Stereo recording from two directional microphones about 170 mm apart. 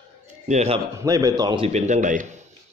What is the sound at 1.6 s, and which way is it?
Speech, 40° right (ahead or behind).